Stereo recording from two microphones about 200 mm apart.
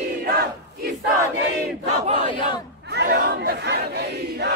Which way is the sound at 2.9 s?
50° right (ahead or behind).